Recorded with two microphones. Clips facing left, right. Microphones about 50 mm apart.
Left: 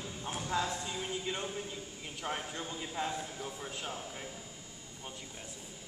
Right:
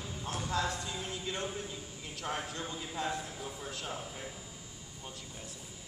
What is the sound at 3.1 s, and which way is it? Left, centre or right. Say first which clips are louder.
Speech: right 1 dB; centre.